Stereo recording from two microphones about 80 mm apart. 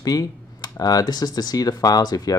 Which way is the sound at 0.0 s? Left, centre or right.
Left.